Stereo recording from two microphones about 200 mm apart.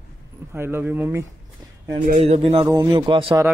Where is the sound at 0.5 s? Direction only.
10° right (ahead or behind).